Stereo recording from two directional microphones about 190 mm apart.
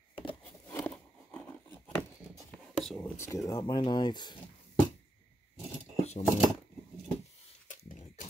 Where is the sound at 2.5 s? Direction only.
Centre (ahead or behind); by 4.3 s 25° left (ahead or behind).